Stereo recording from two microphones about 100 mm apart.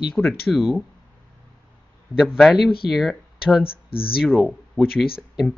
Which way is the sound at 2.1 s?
5° right (ahead or behind).